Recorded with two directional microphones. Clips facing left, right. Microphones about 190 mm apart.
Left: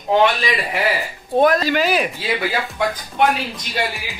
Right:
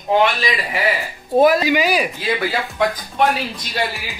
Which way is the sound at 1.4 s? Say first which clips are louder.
Right 2 dB; 10° right (ahead or behind).